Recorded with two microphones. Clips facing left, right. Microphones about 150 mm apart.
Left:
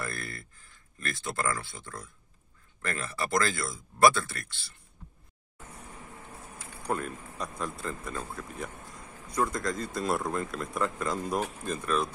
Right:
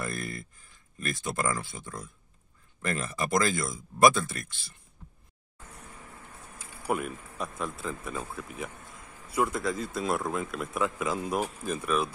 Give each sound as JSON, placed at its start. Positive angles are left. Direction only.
{"t": 0.0, "sound": "speech", "side_deg": -15}
{"t": 6.8, "sound": "speech", "side_deg": -5}